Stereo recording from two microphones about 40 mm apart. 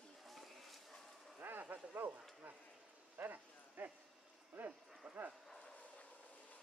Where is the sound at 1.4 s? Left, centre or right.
Right.